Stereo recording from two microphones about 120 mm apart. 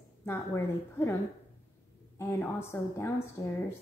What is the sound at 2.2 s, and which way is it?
A woman's voice, 20° left (ahead or behind).